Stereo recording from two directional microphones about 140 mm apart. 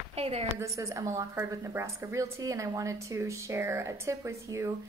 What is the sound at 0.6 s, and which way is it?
A woman's voice, 20° right (ahead or behind).